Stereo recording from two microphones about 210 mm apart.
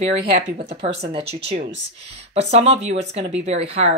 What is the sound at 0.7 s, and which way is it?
Speech, 30° right (ahead or behind).